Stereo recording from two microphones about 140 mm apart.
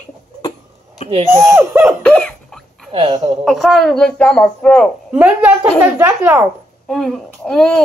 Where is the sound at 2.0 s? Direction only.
5° left (ahead or behind).